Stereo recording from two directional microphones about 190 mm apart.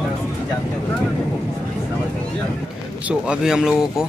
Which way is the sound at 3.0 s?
5° right (ahead or behind).